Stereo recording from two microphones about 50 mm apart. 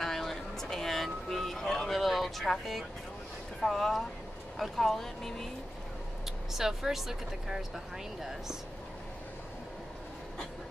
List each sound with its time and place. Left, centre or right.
0.0 s vehicle: centre
3.6 s speech: centre
6.2 s speech: centre